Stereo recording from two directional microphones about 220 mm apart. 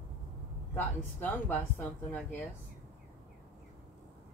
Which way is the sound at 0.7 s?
10° left (ahead or behind).